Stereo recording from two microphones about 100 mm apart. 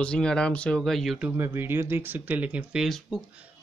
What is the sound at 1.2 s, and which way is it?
Speech, 20° right (ahead or behind).